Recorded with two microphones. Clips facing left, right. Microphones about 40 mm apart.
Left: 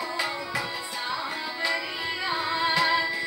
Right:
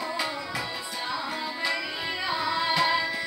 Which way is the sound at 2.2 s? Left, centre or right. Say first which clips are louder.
Even; centre.